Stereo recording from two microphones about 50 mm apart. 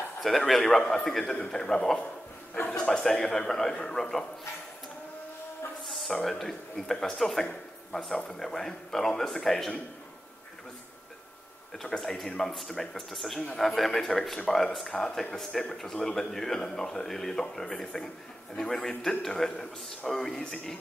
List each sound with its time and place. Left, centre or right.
0.5 s speech: centre
5.9 s a sound: centre
6.2 s speech: centre
12.0 s speech: centre